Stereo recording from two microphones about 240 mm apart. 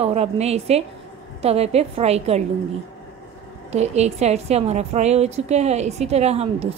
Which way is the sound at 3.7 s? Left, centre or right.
Right.